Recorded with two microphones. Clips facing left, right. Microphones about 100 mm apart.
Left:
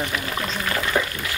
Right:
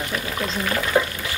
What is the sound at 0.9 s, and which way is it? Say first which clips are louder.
Water: right 4 dB; 15° right (ahead or behind).